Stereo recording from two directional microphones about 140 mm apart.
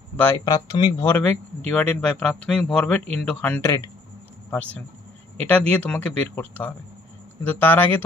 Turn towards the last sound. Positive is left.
turn(degrees=15)  # may be behind; listen again after turning